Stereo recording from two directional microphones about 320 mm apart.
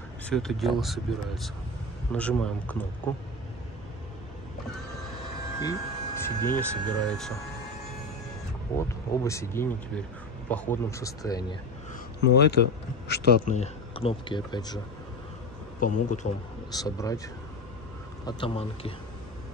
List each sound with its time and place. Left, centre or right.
0.3 s speech: centre
5.6 s speech: centre
8.7 s speech: centre
12.4 s a man's voice: left; by 14.8 s centre
15.8 s speech: left
16.7 s speech: centre
18.2 s speech: centre